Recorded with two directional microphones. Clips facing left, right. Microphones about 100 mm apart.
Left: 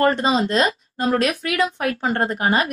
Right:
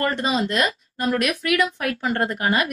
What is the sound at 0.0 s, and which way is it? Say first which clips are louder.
Speech: left 5 dB; 30° left (ahead or behind).